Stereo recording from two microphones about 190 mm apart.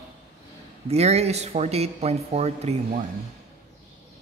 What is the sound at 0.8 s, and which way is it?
Speech, 35° right (ahead or behind).